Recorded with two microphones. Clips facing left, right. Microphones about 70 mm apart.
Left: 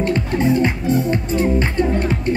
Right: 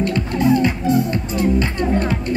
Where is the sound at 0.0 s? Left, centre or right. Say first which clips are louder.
Even; left.